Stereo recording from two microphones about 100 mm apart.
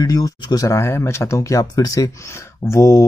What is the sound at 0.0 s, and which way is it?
Speech, 40° left (ahead or behind).